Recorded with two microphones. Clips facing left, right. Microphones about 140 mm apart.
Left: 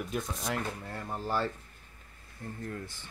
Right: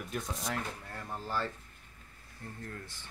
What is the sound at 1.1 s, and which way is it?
Speech, 20° left (ahead or behind).